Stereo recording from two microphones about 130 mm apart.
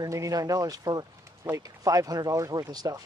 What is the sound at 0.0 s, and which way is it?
Speech, 25° right (ahead or behind).